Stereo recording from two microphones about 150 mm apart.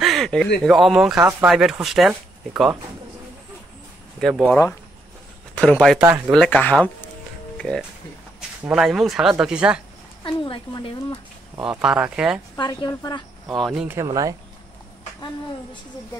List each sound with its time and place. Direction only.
0.0 s a sound: centre (ahead or behind)
0.7 s speech: centre (ahead or behind)
4.2 s a man's voice: centre (ahead or behind)
10.2 s a woman's voice: 35° left (ahead or behind)
11.6 s speech: 5° right (ahead or behind)
12.5 s a woman's voice: 25° left (ahead or behind)
13.6 s speech: centre (ahead or behind)
13.8 s speech: 20° right (ahead or behind)